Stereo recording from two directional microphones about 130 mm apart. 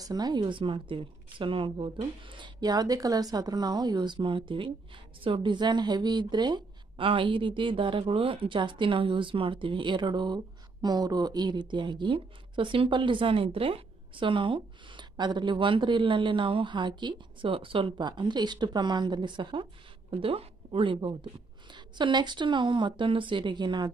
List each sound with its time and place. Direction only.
0.0 s speech: 30° right (ahead or behind)